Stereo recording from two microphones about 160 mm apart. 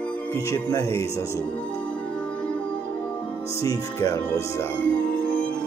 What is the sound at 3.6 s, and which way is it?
Speech, 20° left (ahead or behind).